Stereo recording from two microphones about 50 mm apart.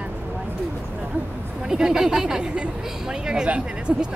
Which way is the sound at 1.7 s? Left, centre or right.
Centre.